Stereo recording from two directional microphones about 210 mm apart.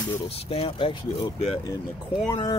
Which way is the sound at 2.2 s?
20° left (ahead or behind).